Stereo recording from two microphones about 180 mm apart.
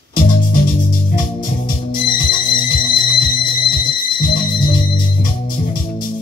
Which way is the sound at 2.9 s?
55° left (ahead or behind).